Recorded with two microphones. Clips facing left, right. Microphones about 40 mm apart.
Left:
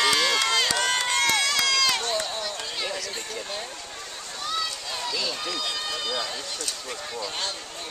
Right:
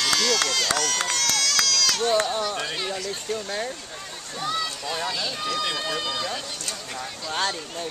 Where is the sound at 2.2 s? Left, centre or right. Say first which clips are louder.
Right 5 dB; centre.